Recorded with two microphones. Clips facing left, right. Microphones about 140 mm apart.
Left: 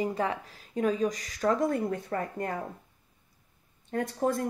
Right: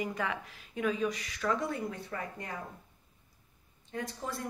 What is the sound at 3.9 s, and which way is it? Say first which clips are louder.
Speech: left 10 dB; 55° left (ahead or behind).